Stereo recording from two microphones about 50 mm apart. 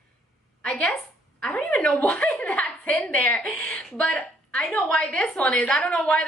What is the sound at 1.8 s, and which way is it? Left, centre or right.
A woman's voice, left.